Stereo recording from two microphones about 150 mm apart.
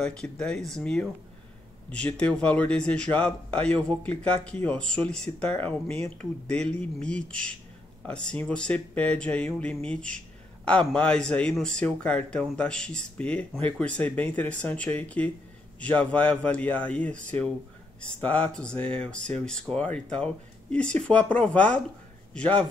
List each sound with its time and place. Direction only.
0.0 s speech: 5° left (ahead or behind)
5.9 s speech: 45° right (ahead or behind)
6.5 s speech: 5° left (ahead or behind)